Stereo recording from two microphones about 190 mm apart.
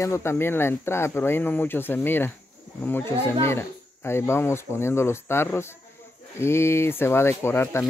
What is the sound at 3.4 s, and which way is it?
Speech, 15° left (ahead or behind).